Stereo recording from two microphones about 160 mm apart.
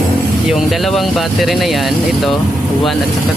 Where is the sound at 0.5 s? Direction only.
Centre (ahead or behind).